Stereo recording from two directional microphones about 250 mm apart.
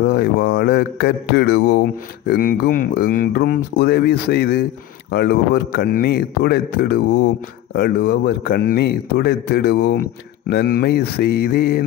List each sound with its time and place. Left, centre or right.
0.0 s speech: left